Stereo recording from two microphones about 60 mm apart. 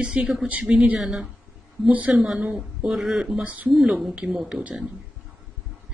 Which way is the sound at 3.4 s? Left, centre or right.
Right.